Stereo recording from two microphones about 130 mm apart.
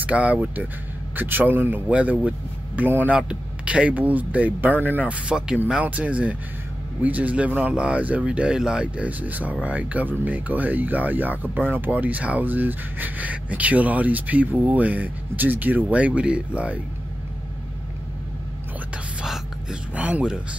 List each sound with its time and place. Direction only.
0.0 s speech: 10° right (ahead or behind)
19.2 s whispering: 5° right (ahead or behind)